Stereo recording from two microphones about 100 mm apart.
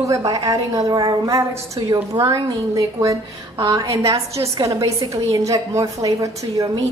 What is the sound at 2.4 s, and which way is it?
A woman's voice, 35° right (ahead or behind).